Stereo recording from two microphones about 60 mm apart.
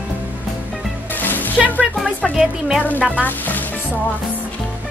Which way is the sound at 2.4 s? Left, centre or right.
Centre.